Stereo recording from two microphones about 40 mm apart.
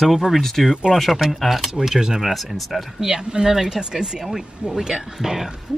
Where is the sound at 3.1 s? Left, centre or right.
Centre.